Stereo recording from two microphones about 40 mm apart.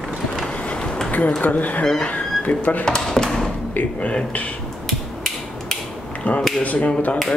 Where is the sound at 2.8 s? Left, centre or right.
Centre.